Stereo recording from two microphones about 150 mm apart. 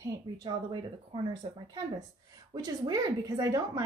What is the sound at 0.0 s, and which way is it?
Speech, 30° right (ahead or behind).